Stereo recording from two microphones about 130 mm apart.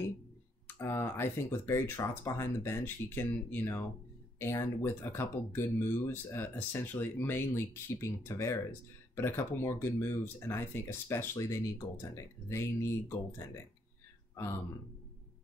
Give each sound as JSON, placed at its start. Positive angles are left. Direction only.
{"t": 0.7, "sound": "speech", "side_deg": 20}